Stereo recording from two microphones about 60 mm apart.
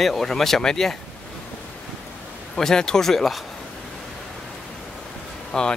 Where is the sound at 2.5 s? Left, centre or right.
Centre.